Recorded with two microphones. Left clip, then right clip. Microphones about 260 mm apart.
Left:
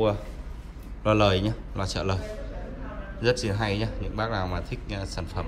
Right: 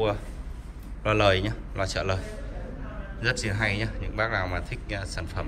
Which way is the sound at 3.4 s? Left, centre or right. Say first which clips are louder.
Right 1 dB; centre.